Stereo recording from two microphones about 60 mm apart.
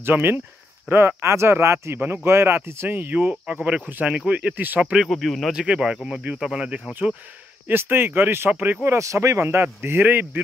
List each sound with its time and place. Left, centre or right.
0.0 s speech: right
0.9 s speech: right
4.9 s speech: centre
5.5 s speech: centre
7.6 s speech: right
8.8 s speech: right
9.8 s speech: right